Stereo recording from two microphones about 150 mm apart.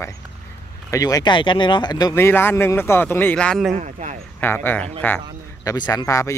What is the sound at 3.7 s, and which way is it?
Speech, 55° right (ahead or behind).